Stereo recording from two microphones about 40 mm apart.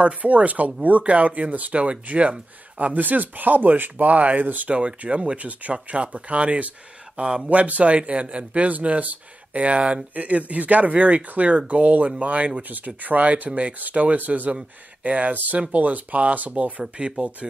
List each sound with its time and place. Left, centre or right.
0.0 s speech: right
2.8 s speech: right
4.7 s speech: right
7.2 s speech: centre
7.4 s speech: right
17.4 s speech: centre